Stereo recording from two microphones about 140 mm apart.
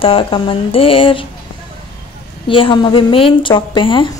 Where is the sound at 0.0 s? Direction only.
40° left (ahead or behind).